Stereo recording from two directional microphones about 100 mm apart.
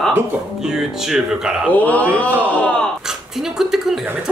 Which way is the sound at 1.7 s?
15° left (ahead or behind).